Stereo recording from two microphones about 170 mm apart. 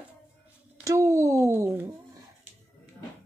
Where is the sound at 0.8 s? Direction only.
20° right (ahead or behind).